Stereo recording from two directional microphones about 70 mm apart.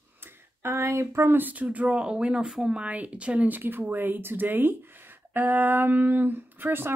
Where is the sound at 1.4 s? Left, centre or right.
Right.